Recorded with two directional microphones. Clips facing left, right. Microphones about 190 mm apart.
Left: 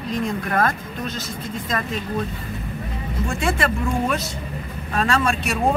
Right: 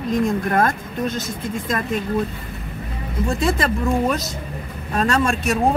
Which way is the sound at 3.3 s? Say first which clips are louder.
Right 1 dB; 35° right (ahead or behind).